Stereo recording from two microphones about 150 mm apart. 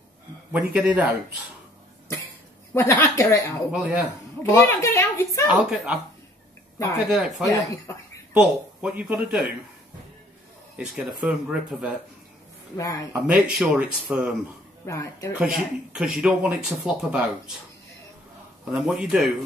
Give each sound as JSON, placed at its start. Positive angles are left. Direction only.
{"t": 0.5, "sound": "speech", "side_deg": -10}
{"t": 2.7, "sound": "a woman's voice", "side_deg": 15}
{"t": 3.7, "sound": "speech", "side_deg": -5}
{"t": 4.4, "sound": "a woman's voice", "side_deg": 15}
{"t": 5.5, "sound": "speech", "side_deg": -5}
{"t": 7.1, "sound": "speech", "side_deg": -5}
{"t": 7.4, "sound": "a woman's voice", "side_deg": 25}
{"t": 8.3, "sound": "speech", "side_deg": -10}
{"t": 10.8, "sound": "speech", "side_deg": -5}
{"t": 12.7, "sound": "a woman's voice", "side_deg": 20}
{"t": 13.1, "sound": "speech", "side_deg": 0}
{"t": 14.9, "sound": "a woman's voice", "side_deg": 20}
{"t": 15.3, "sound": "speech", "side_deg": -5}
{"t": 18.7, "sound": "speech", "side_deg": -5}